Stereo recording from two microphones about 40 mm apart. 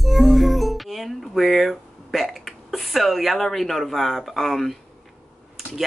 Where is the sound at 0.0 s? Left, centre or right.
Centre.